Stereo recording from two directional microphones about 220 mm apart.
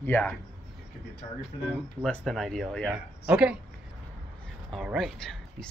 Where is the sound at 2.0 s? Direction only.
5° left (ahead or behind).